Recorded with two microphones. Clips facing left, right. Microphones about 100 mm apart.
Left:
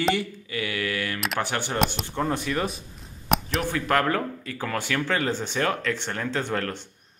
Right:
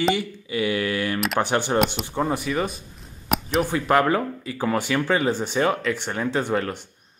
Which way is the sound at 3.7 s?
15° right (ahead or behind).